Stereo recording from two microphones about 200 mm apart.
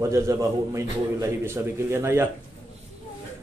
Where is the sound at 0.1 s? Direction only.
15° right (ahead or behind).